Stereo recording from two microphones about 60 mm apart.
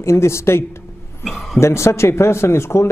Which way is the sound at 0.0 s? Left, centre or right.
Left.